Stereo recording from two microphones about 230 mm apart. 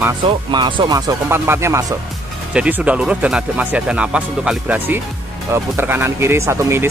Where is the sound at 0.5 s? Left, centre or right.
Right.